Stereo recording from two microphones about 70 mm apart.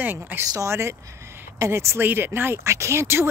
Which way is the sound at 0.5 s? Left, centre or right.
Right.